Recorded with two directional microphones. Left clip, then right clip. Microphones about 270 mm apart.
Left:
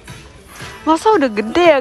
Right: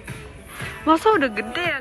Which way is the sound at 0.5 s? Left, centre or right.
Centre.